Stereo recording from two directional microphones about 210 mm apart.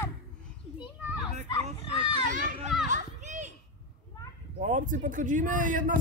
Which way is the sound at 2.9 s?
35° right (ahead or behind).